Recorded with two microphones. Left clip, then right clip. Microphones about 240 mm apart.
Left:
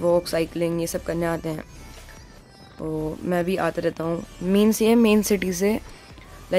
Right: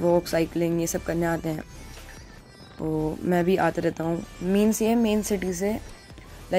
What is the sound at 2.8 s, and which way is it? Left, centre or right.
Speech, centre.